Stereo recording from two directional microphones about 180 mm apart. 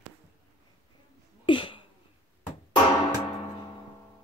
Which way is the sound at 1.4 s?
30° left (ahead or behind).